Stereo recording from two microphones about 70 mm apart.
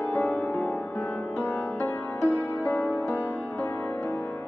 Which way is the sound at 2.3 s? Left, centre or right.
Left.